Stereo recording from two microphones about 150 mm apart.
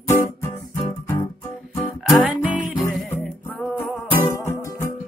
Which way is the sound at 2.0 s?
5° right (ahead or behind).